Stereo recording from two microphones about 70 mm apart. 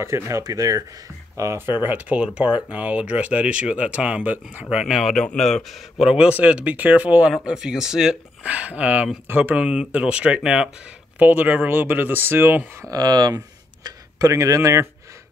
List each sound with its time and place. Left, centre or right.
0.0 s speech: right
0.4 s speech: right
1.3 s speech: right
1.8 s speech: right
4.6 s speech: centre
5.0 s speech: centre
6.1 s speech: centre
7.4 s speech: centre
9.7 s speech: centre; by 12.6 s right
12.9 s speech: right
13.8 s speech: right